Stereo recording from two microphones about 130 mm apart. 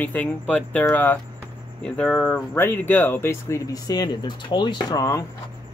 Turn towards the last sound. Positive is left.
turn(degrees=30)  # may be behind; listen again after turning